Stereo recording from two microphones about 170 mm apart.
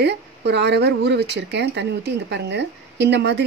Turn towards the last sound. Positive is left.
turn(degrees=-90)